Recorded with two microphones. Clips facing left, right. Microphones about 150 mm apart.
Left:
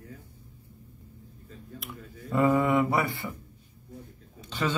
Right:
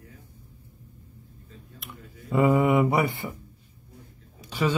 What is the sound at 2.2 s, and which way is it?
Speech, 10° right (ahead or behind).